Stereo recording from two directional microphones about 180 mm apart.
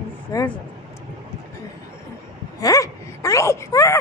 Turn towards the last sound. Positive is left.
turn(degrees=15)  # may be behind; listen again after turning